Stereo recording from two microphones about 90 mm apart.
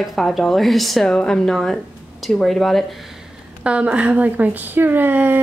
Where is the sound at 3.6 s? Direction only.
15° right (ahead or behind).